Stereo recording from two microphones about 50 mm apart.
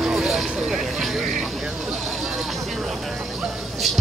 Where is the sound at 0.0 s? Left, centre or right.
Centre.